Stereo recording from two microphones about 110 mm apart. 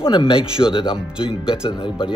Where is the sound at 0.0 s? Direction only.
50° left (ahead or behind).